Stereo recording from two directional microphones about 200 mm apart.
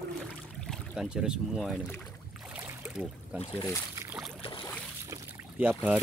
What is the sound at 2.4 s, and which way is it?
Boat, 10° right (ahead or behind).